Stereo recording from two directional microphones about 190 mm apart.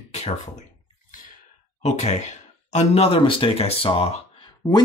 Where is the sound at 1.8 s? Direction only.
35° left (ahead or behind).